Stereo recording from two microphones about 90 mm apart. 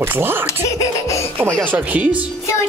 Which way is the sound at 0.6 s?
35° left (ahead or behind).